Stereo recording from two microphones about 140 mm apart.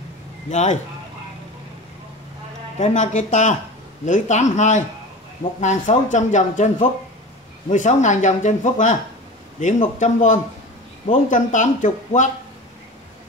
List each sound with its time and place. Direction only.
0.5 s speech: 60° left (ahead or behind)
2.8 s speech: 55° left (ahead or behind)